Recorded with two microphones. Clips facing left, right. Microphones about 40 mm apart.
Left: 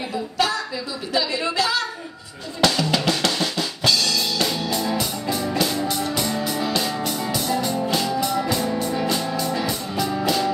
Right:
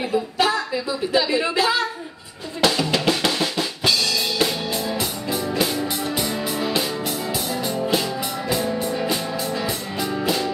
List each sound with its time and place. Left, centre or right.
0.1 s speech: centre
2.6 s drum: centre
5.6 s music: centre